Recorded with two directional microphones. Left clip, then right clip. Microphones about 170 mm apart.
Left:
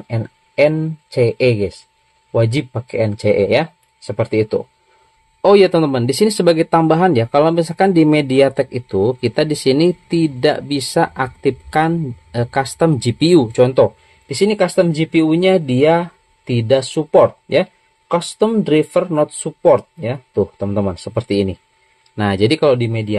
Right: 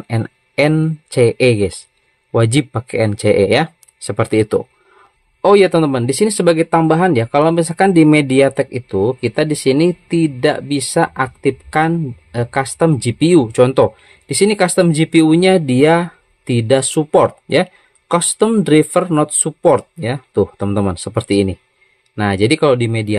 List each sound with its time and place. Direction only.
0.1 s speech: 30° right (ahead or behind)
5.4 s speech: 10° right (ahead or behind)
13.5 s speech: 20° right (ahead or behind)